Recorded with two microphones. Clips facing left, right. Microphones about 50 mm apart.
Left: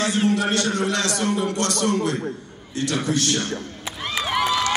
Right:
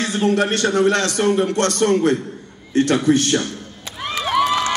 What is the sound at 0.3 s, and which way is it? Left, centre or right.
A man's voice, right.